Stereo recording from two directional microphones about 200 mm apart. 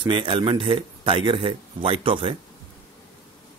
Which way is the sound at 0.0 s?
25° right (ahead or behind).